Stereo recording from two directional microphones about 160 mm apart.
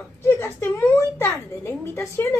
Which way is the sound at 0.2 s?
15° left (ahead or behind).